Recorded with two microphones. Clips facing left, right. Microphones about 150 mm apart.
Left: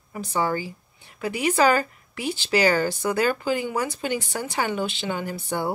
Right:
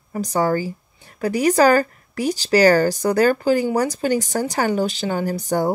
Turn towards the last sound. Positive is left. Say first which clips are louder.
# right 7 dB
turn(degrees=-40)  # may be behind; listen again after turning